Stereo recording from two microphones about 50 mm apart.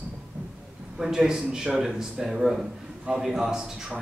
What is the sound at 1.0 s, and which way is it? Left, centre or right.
Speech, centre.